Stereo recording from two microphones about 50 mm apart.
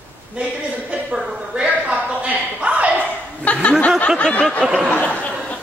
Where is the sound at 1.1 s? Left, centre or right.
Centre; by 2.9 s right.